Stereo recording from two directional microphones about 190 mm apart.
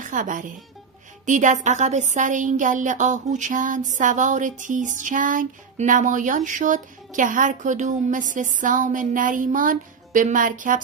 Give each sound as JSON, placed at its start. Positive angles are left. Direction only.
{"t": 0.0, "sound": "a woman's voice", "side_deg": -45}